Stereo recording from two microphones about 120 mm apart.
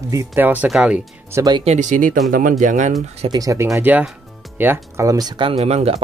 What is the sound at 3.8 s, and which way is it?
Speech, 15° right (ahead or behind).